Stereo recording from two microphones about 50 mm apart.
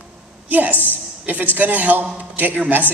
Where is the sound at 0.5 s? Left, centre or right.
Right.